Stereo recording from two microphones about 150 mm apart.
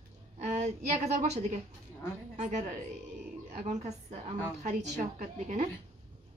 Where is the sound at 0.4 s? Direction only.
50° right (ahead or behind).